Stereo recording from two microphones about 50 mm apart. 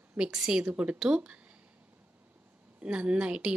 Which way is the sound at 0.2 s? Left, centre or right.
Right.